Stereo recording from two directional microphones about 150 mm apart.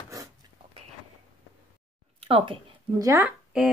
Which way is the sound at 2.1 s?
40° right (ahead or behind).